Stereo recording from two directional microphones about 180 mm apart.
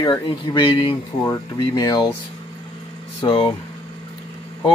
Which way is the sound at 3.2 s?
30° left (ahead or behind).